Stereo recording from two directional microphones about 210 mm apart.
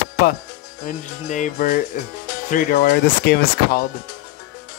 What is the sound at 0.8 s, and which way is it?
Speech, 35° left (ahead or behind).